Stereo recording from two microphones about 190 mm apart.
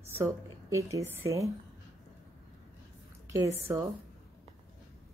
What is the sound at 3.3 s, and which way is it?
Speech, 15° right (ahead or behind).